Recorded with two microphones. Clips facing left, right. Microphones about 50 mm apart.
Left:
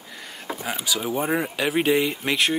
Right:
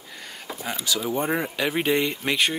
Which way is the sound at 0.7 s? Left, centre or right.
Left.